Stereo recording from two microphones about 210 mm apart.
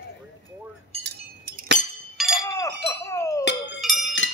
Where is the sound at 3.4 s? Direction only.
55° left (ahead or behind).